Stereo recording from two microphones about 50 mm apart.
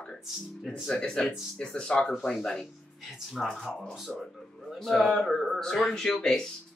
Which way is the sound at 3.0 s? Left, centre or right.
Centre.